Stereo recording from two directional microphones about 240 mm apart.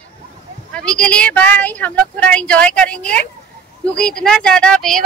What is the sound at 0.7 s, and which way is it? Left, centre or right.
Speech, centre.